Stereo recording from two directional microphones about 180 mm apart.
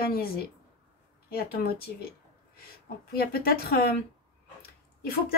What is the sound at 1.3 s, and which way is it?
Speech, 55° left (ahead or behind).